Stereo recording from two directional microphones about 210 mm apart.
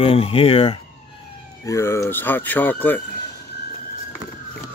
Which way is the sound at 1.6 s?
15° left (ahead or behind).